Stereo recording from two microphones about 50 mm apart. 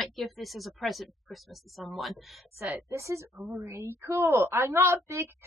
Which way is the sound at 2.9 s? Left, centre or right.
Right.